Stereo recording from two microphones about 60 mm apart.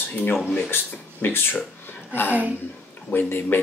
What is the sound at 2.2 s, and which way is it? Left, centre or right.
Speech, right.